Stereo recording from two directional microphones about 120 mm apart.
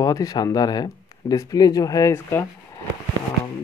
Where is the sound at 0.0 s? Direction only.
30° left (ahead or behind).